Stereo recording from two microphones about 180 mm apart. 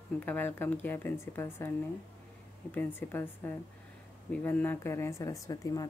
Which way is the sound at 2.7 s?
10° left (ahead or behind).